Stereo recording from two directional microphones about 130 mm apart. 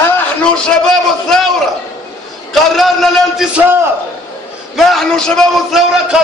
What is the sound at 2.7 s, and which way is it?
Speech, centre (ahead or behind).